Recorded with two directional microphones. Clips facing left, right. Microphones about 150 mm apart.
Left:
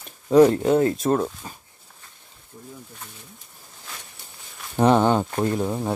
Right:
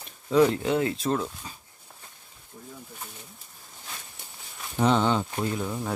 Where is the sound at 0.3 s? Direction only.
40° left (ahead or behind).